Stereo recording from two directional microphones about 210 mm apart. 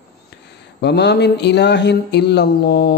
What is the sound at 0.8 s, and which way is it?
A man's voice, 55° left (ahead or behind).